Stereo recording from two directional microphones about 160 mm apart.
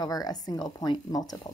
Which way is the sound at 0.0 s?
25° left (ahead or behind).